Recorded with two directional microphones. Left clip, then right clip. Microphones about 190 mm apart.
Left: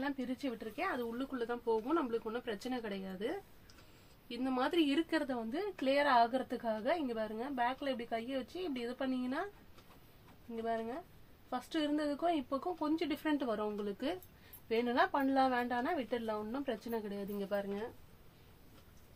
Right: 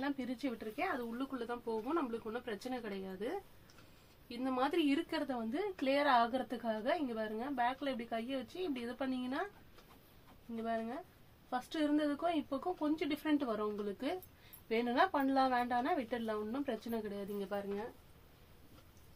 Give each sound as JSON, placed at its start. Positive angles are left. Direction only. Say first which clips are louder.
{"t": 0.0, "sound": "a woman's voice", "louder": "even", "side_deg": 25}
{"t": 0.7, "sound": "a woman's voice", "louder": "left 2 dB", "side_deg": 40}
{"t": 10.6, "sound": "a woman's voice", "louder": "left 1 dB", "side_deg": 30}